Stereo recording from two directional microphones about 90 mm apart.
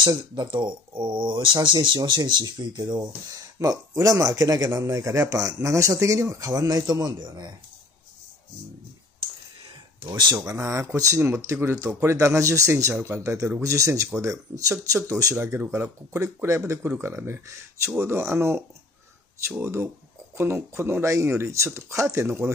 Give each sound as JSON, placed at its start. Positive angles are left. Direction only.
{"t": 0.0, "sound": "a man's voice", "side_deg": -55}
{"t": 10.0, "sound": "speech", "side_deg": -55}
{"t": 10.5, "sound": "a man's voice", "side_deg": -35}